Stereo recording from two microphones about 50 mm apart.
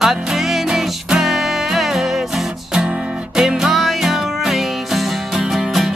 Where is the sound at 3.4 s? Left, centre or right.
Centre.